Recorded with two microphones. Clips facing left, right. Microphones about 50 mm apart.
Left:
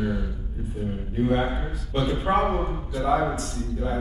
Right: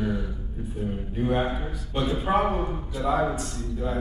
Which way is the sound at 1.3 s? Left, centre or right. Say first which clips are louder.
Left 1 dB; centre.